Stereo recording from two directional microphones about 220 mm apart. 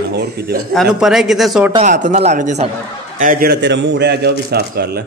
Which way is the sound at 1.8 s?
35° right (ahead or behind).